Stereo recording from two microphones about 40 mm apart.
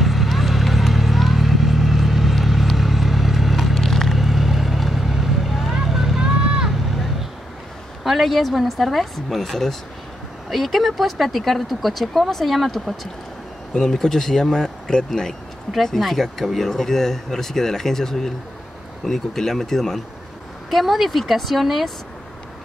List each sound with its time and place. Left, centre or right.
0.0 s vehicle: centre
6.2 s vehicle: centre
8.0 s speech: centre
20.7 s speech: centre